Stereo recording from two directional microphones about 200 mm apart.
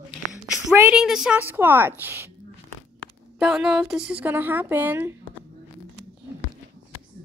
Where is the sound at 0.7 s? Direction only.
5° right (ahead or behind).